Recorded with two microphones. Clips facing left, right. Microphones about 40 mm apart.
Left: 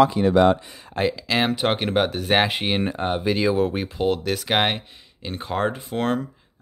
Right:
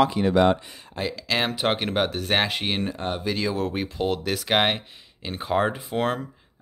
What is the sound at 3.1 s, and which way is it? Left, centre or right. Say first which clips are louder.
Speech: left 7 dB; centre.